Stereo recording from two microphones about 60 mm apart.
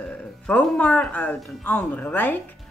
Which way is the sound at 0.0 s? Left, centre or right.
Left.